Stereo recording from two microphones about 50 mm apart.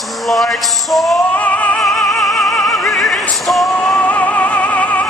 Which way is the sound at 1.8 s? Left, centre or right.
Centre.